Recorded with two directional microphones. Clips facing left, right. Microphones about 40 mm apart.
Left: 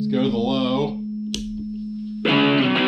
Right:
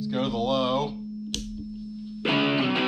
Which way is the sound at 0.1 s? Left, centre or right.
Centre.